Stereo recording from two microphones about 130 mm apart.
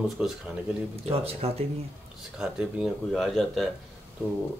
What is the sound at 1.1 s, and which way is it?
Speech, 50° right (ahead or behind).